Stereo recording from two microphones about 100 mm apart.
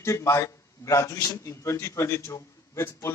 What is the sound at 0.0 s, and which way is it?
A man's voice, 30° left (ahead or behind).